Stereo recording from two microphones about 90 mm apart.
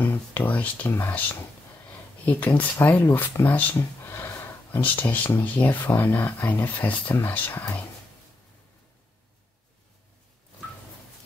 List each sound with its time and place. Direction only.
0.0 s speech: 20° left (ahead or behind)
0.9 s speech: 30° left (ahead or behind)
2.2 s speech: 20° left (ahead or behind)
3.7 s a sound: 30° left (ahead or behind)
4.8 s speech: 20° left (ahead or behind)